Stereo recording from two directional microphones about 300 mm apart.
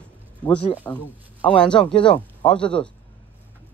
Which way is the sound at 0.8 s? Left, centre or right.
Centre.